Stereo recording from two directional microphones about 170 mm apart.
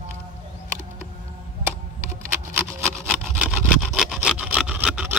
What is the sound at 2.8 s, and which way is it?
Wood, centre (ahead or behind).